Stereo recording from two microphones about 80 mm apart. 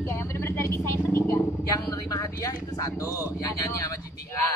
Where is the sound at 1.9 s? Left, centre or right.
Left.